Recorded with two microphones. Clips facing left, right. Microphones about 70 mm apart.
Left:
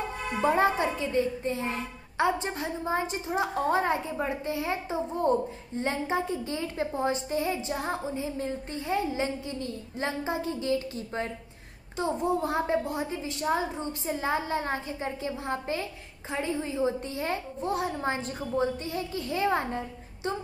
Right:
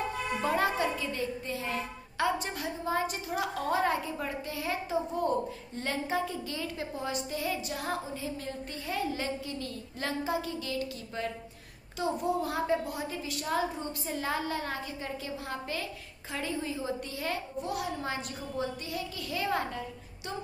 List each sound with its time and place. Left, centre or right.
0.4 s a woman's voice: left